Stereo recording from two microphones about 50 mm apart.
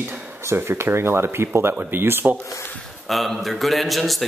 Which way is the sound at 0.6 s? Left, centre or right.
Right.